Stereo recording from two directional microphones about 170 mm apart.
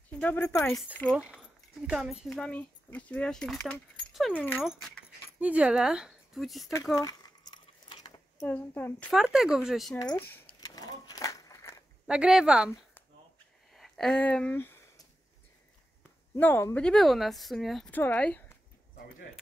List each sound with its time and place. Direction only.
0.1 s speech: 10° left (ahead or behind)
1.1 s speech: 10° right (ahead or behind)
7.0 s speech: 20° left (ahead or behind)
7.5 s a sound: 25° left (ahead or behind); by 9.1 s 10° left (ahead or behind)
9.1 s speech: centre (ahead or behind)
10.1 s speech: 10° left (ahead or behind)
10.4 s a sound: 20° left (ahead or behind)
12.1 s speech: 5° right (ahead or behind)
13.7 s speech: centre (ahead or behind)
16.3 s speech: 15° left (ahead or behind)